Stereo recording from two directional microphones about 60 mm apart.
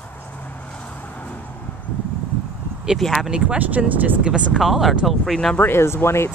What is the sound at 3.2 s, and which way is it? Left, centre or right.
Speech, centre.